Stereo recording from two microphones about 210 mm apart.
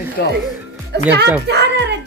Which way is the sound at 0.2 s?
50° left (ahead or behind).